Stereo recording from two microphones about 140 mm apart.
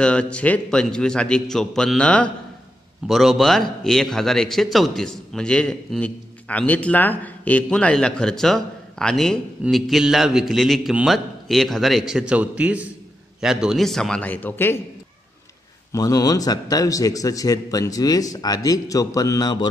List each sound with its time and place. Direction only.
0.0 s a man's voice: 10° left (ahead or behind)
15.9 s a man's voice: 25° left (ahead or behind)